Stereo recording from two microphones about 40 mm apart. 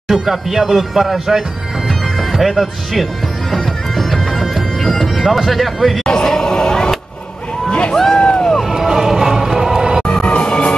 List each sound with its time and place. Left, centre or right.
0.1 s speech: centre
1.9 s bagpipes: centre
6.0 s a sound: centre
7.9 s speech: centre
8.2 s music: left
8.6 s music: centre
10.2 s music: left